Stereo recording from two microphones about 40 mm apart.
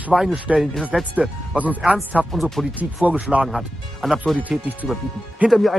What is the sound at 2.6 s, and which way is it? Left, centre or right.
Speech, centre.